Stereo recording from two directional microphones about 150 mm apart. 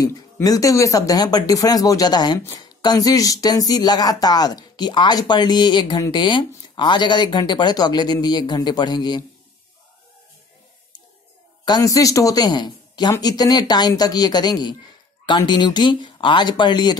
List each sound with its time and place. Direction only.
0.0 s speech: 25° left (ahead or behind)
11.6 s speech: 25° left (ahead or behind)